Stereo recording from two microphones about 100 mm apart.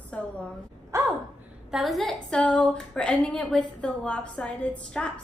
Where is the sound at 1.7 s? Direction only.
Centre (ahead or behind).